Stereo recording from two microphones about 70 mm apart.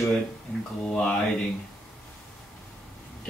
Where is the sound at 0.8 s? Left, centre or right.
Centre.